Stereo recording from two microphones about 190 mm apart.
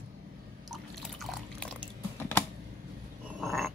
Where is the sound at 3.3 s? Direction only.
Centre (ahead or behind).